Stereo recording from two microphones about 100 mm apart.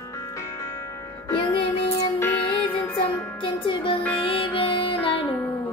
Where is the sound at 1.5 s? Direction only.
75° left (ahead or behind).